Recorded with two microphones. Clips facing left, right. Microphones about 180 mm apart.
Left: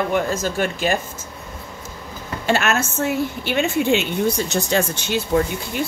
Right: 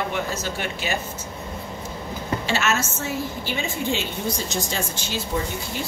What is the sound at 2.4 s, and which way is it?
A woman's voice, 55° left (ahead or behind).